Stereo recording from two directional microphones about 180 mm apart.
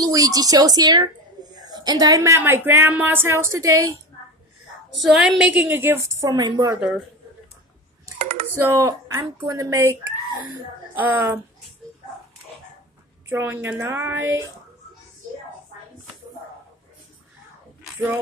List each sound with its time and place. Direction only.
0.0 s speech: 20° right (ahead or behind)
5.0 s speech: centre (ahead or behind); by 6.8 s 20° right (ahead or behind)
8.2 s computer keyboard: 45° right (ahead or behind)
8.5 s speech: 15° right (ahead or behind)
13.3 s speech: 10° right (ahead or behind)